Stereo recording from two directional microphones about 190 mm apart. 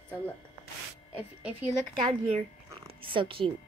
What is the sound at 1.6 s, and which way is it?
A woman's voice, 30° right (ahead or behind).